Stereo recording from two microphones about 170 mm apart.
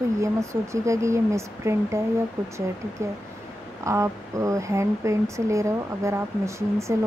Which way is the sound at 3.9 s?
20° right (ahead or behind).